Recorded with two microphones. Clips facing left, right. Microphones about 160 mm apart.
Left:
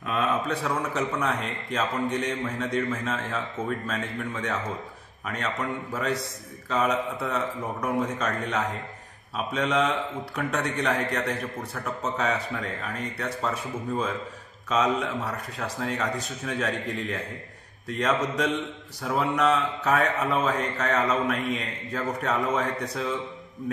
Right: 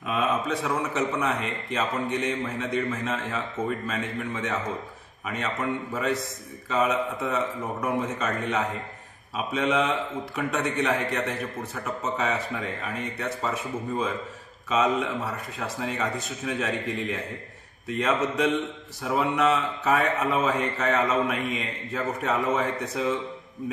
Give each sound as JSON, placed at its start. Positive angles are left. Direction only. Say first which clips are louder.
{"t": 0.0, "sound": "a man's voice", "louder": "even", "side_deg": -5}
{"t": 14.7, "sound": "a man's voice", "louder": "right 1 dB", "side_deg": -5}